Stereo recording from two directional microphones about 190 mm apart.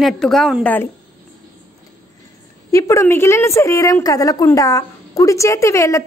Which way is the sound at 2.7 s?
15° left (ahead or behind).